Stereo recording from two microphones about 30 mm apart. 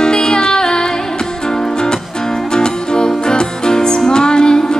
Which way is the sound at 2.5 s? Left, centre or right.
Left.